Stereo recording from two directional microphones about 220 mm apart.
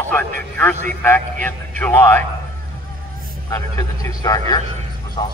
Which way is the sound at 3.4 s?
15° left (ahead or behind).